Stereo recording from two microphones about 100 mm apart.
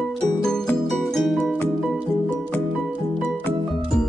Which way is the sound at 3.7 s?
5° left (ahead or behind).